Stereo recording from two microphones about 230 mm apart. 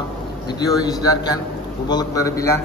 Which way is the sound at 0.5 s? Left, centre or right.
Centre.